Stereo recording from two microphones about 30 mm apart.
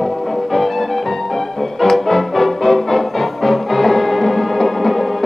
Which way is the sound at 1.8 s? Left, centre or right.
Centre.